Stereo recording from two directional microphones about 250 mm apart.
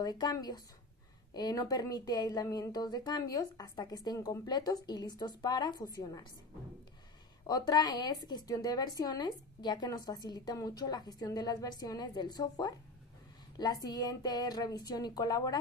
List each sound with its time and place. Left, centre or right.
0.0 s a woman's voice: centre
7.4 s a woman's voice: centre